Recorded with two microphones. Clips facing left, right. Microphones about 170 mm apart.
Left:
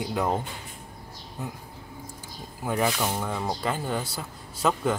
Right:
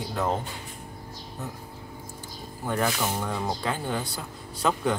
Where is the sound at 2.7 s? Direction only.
5° left (ahead or behind).